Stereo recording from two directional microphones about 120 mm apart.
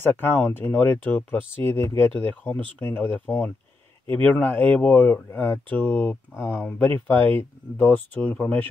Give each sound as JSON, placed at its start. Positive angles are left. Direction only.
{"t": 0.0, "sound": "speech", "side_deg": 15}